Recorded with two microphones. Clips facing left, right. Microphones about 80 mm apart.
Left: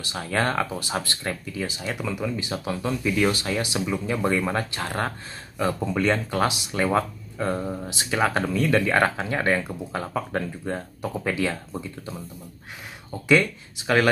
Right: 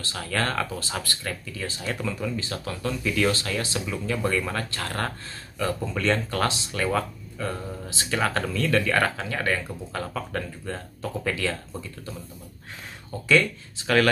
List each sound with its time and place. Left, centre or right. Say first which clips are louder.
0.0 s speech: left 3 dB; centre
13.3 s speech: left 1 dB; centre